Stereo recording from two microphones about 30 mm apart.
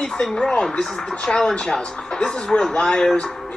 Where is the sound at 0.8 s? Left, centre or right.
Centre.